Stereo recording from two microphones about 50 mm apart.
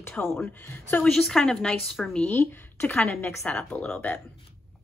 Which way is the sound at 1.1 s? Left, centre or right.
Centre.